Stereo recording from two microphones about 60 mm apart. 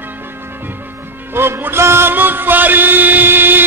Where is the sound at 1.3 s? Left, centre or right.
Right.